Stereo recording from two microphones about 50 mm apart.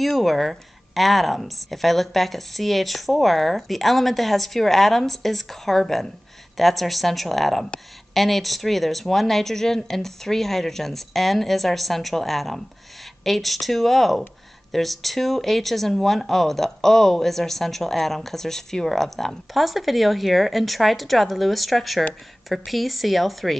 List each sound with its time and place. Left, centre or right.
0.2 s speech: centre